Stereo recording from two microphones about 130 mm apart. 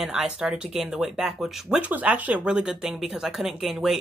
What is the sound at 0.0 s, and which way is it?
Speech, 5° right (ahead or behind).